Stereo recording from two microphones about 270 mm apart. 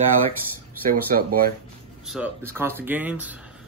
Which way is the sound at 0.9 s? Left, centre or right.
Right.